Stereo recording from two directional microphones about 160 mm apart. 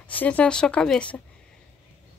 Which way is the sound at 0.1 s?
10° left (ahead or behind).